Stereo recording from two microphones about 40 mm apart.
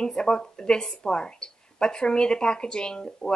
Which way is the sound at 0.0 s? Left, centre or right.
Centre.